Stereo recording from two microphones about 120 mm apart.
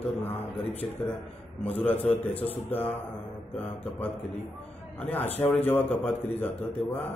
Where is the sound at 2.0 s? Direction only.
55° left (ahead or behind).